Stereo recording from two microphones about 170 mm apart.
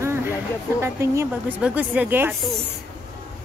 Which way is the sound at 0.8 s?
15° right (ahead or behind).